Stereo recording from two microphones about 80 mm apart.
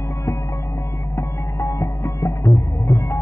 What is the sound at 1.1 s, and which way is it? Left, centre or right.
Music, left.